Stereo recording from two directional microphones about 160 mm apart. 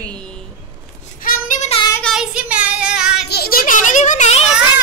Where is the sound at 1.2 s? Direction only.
60° left (ahead or behind).